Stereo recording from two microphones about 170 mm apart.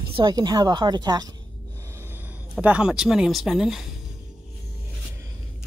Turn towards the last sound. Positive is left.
turn(degrees=0)  # may be behind; listen again after turning